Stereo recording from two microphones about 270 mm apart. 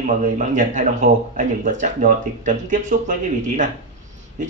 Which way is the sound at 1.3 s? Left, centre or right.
Right.